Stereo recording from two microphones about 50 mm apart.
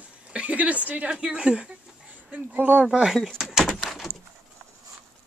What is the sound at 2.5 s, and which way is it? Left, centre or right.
Speech, right.